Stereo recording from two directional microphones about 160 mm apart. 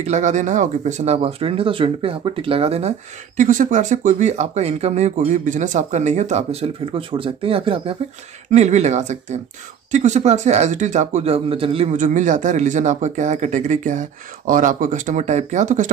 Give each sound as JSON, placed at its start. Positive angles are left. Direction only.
{"t": 0.0, "sound": "speech", "side_deg": -50}
{"t": 3.3, "sound": "speech", "side_deg": -50}
{"t": 8.5, "sound": "speech", "side_deg": -45}